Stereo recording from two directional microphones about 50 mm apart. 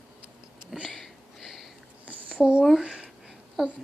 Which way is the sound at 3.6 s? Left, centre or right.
Centre.